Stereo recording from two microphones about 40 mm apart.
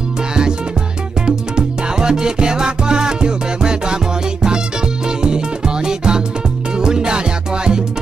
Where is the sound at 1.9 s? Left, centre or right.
Centre.